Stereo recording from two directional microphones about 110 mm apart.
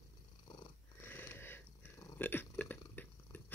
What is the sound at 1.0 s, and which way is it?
Cat, 20° left (ahead or behind).